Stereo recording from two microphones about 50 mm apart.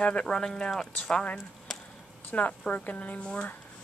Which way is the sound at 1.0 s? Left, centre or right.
Left.